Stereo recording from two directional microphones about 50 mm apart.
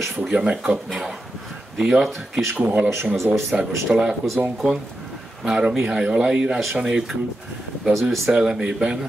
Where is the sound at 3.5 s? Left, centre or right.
Centre.